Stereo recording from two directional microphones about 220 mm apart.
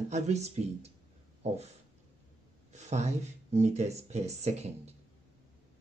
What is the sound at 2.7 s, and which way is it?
Speech, 30° right (ahead or behind).